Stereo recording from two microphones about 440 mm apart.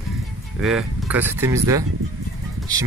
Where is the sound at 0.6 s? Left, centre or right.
Centre.